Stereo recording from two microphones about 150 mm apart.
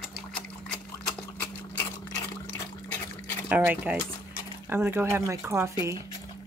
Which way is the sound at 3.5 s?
10° right (ahead or behind).